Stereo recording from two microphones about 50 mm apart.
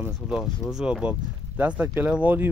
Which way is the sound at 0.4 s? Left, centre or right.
Centre.